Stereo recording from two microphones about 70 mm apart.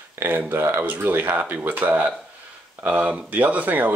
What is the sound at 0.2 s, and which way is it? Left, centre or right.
Speech, right.